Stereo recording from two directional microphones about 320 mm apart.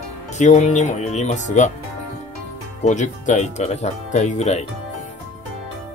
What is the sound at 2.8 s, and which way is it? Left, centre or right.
Speech, left.